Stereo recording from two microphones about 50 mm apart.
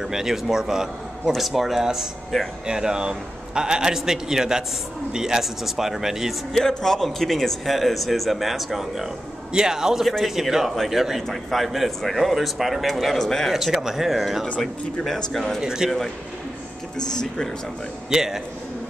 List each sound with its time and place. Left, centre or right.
0.0 s a man's voice: centre
6.5 s a man's voice: centre
10.0 s a man's voice: centre
13.5 s a man's voice: centre
15.6 s a man's voice: centre
17.1 s speech: centre
18.1 s a man's voice: centre